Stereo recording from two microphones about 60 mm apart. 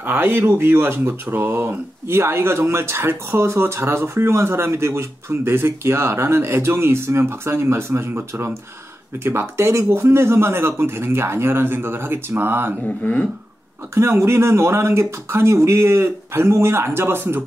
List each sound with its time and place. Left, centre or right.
0.0 s speech: right
12.8 s speech: left
13.9 s speech: right